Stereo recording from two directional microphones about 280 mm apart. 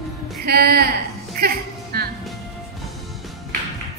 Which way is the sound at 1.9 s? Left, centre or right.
Right.